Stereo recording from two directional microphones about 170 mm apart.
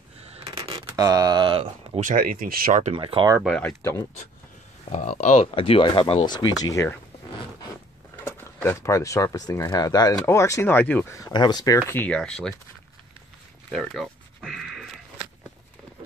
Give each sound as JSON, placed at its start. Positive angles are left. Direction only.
{"t": 0.2, "sound": "a sound", "side_deg": -35}
{"t": 2.0, "sound": "speech", "side_deg": -50}
{"t": 2.8, "sound": "speech", "side_deg": -30}
{"t": 3.4, "sound": "speech", "side_deg": 5}
{"t": 4.8, "sound": "speech", "side_deg": 40}
{"t": 8.2, "sound": "speech", "side_deg": 10}
{"t": 13.7, "sound": "a sound", "side_deg": 0}